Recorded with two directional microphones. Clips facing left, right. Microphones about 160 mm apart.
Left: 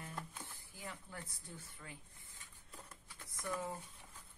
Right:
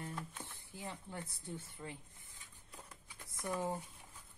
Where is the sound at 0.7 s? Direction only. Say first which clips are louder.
Right 4 dB; 25° right (ahead or behind).